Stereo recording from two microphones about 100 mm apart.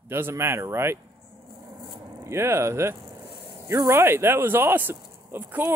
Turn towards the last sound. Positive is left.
turn(degrees=-20)  # may be behind; listen again after turning